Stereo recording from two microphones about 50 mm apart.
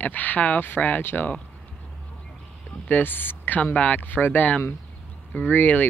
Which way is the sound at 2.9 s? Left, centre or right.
Left.